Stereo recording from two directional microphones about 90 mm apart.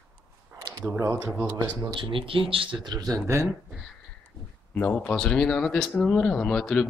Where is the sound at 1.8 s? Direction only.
65° right (ahead or behind).